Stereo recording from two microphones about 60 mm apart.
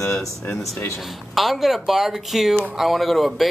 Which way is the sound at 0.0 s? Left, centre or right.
Left.